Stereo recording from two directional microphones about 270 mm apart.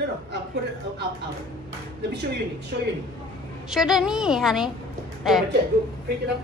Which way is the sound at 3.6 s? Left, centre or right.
Centre.